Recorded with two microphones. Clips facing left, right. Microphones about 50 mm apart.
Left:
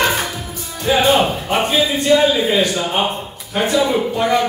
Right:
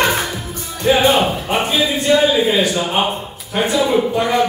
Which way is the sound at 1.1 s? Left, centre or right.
Centre.